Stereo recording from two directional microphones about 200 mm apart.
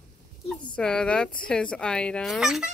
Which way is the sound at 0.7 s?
5° left (ahead or behind).